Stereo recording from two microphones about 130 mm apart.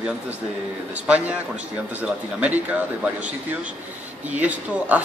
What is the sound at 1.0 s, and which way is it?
Speech, 10° right (ahead or behind).